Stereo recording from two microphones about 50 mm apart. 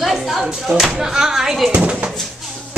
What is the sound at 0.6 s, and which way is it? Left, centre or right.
Speech, centre.